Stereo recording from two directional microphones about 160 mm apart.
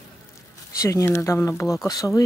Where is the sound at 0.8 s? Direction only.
20° left (ahead or behind).